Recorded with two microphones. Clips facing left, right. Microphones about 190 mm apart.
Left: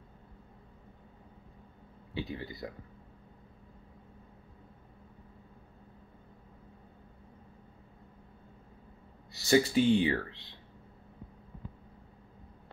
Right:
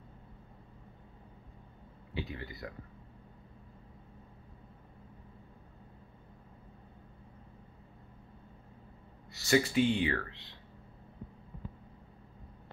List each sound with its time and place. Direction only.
2.1 s speech: 30° left (ahead or behind)
9.3 s speech: 35° left (ahead or behind)